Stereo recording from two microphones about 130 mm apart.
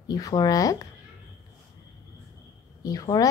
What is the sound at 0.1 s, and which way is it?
Speech, 30° left (ahead or behind).